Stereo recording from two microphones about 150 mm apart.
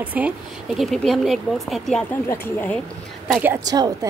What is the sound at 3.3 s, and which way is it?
Speech, 15° right (ahead or behind).